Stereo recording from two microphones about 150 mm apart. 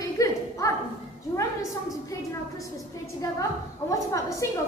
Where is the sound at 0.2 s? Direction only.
25° left (ahead or behind).